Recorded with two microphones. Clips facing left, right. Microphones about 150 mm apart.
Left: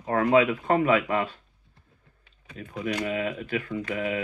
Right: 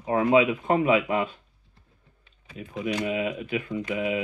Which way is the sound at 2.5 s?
20° right (ahead or behind).